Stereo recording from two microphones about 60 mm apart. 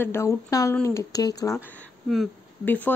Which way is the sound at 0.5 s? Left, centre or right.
Left.